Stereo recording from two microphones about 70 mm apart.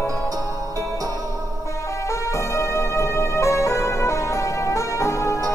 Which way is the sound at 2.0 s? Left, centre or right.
Left.